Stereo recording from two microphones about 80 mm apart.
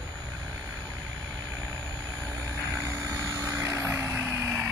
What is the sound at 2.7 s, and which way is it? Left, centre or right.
Vehicle, right.